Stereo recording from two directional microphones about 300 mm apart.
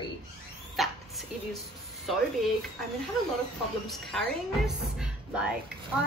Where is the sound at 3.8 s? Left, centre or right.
Centre.